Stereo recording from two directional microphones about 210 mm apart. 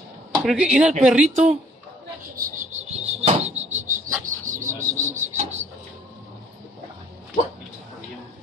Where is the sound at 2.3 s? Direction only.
40° right (ahead or behind).